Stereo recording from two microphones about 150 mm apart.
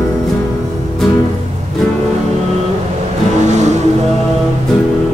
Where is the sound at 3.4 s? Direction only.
50° right (ahead or behind).